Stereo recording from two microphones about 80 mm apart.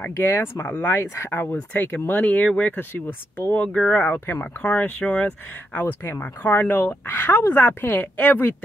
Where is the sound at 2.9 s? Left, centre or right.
Left.